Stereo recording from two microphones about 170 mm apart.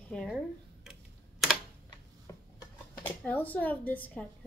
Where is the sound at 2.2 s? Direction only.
20° left (ahead or behind).